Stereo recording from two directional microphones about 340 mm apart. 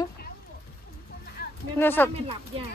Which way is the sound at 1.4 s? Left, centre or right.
Left.